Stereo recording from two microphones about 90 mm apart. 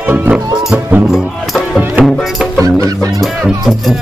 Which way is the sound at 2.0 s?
20° right (ahead or behind).